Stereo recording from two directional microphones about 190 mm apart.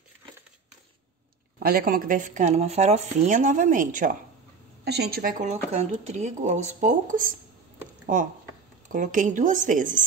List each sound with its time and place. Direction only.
1.6 s speech: 50° right (ahead or behind)
4.8 s a woman's voice: 60° right (ahead or behind); by 7.3 s 45° right (ahead or behind)
8.9 s a woman's voice: 40° right (ahead or behind)